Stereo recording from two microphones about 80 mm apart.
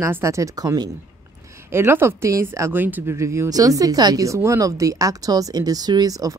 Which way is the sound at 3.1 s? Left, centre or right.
Right.